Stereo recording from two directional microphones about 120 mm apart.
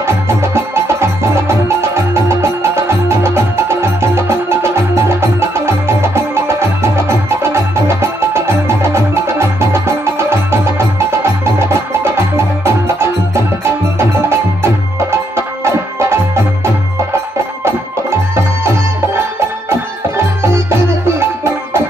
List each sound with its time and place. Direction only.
0.0 s music: 20° right (ahead or behind)